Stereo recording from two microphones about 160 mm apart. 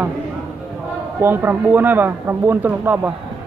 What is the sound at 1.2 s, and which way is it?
Speech, 15° right (ahead or behind).